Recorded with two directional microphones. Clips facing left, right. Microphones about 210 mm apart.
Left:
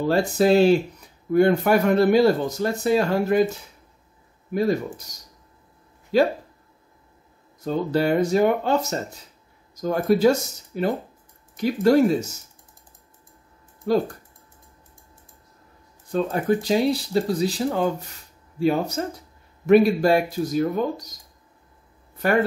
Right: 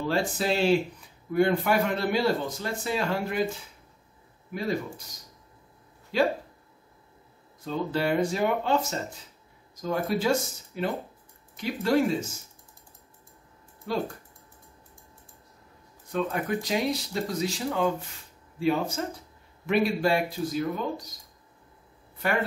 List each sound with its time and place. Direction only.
0.1 s speech: 40° left (ahead or behind)
4.6 s speech: 45° left (ahead or behind)
6.1 s speech: 40° left (ahead or behind)
7.6 s speech: 40° left (ahead or behind)
9.8 s speech: 45° left (ahead or behind)
16.1 s speech: 35° left (ahead or behind)